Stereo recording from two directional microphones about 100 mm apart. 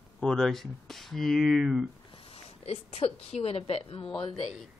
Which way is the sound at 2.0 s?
70° left (ahead or behind).